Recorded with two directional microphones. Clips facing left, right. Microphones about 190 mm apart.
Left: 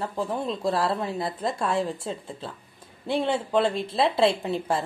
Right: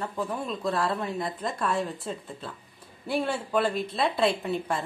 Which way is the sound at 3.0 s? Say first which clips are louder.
Left 3 dB; 25° left (ahead or behind).